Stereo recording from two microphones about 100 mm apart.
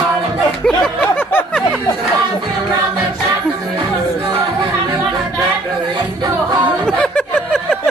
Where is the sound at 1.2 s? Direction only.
20° left (ahead or behind).